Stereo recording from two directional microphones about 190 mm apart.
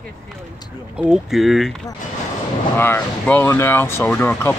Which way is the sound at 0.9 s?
5° right (ahead or behind).